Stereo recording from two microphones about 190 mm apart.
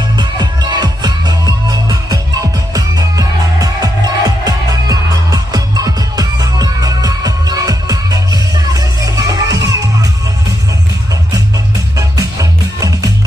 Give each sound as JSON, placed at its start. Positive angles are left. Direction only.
{"t": 0.2, "sound": "music", "side_deg": -20}
{"t": 12.0, "sound": "music", "side_deg": -20}